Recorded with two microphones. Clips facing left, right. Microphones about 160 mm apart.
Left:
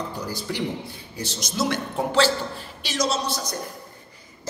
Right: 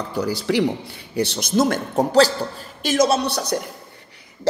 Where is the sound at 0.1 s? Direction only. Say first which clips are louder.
Right 9 dB; 75° right (ahead or behind); by 2.3 s 40° right (ahead or behind).